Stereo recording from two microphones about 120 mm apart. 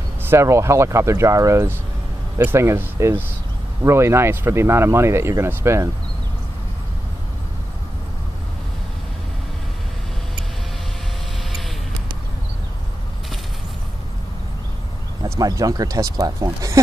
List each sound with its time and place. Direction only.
0.2 s speech: 20° right (ahead or behind)
15.2 s speech: 25° right (ahead or behind)